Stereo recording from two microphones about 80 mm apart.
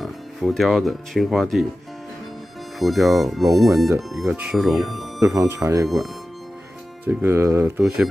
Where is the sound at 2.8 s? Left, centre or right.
Centre.